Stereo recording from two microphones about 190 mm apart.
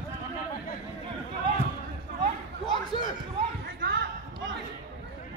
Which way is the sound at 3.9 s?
70° right (ahead or behind).